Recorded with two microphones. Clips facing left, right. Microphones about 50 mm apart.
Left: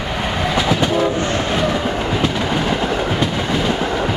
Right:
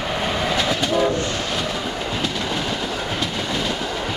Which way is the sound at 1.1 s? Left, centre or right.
Left.